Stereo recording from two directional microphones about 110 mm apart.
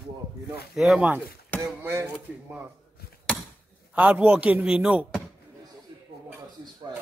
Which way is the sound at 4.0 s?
10° right (ahead or behind).